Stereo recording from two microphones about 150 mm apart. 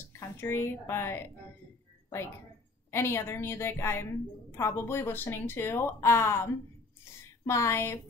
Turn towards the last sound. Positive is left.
turn(degrees=15)  # may be behind; listen again after turning